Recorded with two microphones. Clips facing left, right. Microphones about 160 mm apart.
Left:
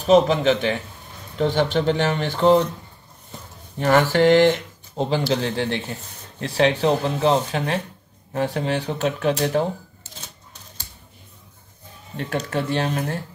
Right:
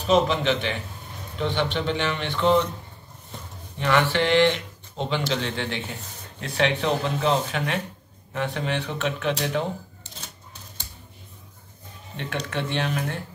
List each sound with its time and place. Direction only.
0.0 s speech: 40° left (ahead or behind)
3.8 s speech: 45° left (ahead or behind)
12.4 s speech: 40° left (ahead or behind)